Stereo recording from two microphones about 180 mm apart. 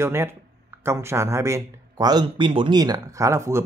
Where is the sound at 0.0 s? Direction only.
15° right (ahead or behind).